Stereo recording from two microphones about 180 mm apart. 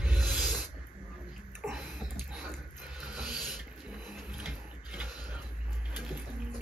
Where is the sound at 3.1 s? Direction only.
5° right (ahead or behind).